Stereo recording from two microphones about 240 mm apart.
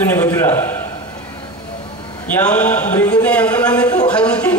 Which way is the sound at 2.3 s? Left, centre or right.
Centre.